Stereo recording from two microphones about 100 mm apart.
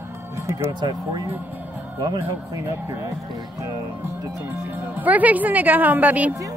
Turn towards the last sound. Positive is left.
turn(degrees=-15)  # may be behind; listen again after turning